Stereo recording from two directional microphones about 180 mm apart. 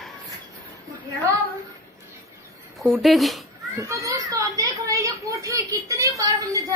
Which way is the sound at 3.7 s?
20° right (ahead or behind).